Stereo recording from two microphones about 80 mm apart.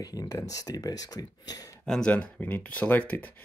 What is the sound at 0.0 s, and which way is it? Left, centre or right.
Speech, left.